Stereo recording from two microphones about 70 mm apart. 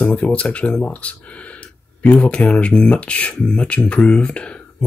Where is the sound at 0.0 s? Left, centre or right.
Centre.